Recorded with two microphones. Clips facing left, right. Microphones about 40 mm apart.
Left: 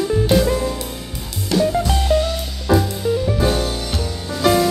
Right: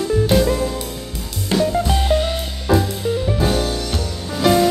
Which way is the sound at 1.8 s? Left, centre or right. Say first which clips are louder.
Right 1 dB; centre.